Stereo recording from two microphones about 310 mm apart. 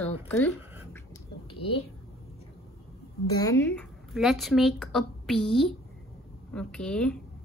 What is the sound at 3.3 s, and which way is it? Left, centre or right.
Speech, centre.